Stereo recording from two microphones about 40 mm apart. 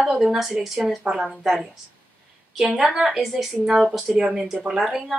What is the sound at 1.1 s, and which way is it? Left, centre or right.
Speech, right.